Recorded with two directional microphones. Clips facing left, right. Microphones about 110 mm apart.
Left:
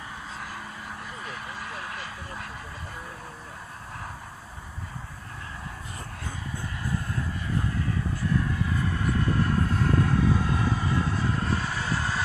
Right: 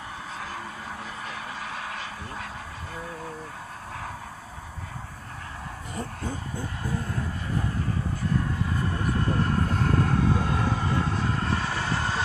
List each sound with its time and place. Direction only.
1.3 s vehicle: 70° right (ahead or behind)
9.0 s vehicle: 45° right (ahead or behind); by 12.2 s 60° right (ahead or behind)